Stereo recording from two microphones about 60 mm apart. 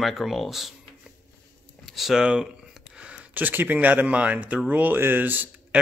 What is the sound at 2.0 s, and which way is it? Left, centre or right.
Speech, centre.